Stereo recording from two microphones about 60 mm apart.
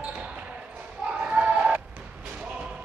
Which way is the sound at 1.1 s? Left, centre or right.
Centre.